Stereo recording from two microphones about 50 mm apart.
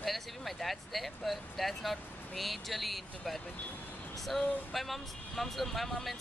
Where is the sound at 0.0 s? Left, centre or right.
Centre.